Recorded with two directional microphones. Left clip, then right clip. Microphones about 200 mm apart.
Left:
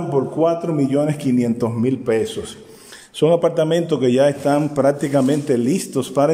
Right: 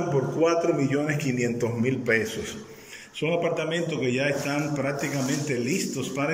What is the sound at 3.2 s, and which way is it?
Speech, 40° left (ahead or behind).